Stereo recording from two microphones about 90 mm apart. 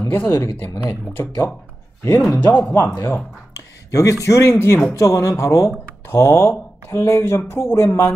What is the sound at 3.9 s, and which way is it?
Speech, 35° left (ahead or behind).